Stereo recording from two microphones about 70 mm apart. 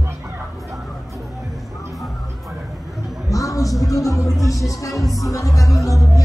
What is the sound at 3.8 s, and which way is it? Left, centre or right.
Music, left.